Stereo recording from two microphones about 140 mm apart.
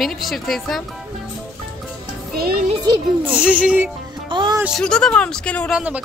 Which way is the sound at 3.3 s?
10° right (ahead or behind).